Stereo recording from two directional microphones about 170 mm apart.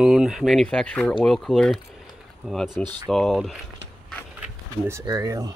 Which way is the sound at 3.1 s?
Centre (ahead or behind).